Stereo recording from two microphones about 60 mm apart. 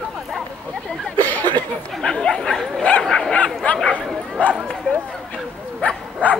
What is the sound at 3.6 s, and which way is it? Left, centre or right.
Speech, left.